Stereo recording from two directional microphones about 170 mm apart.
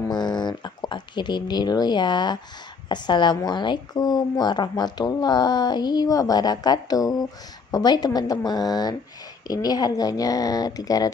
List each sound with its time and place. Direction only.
0.1 s a woman's voice: 25° left (ahead or behind)